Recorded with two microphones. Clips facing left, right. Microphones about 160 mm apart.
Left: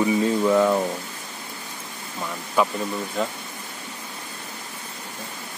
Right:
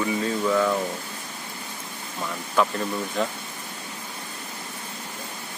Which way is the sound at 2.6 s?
5° left (ahead or behind).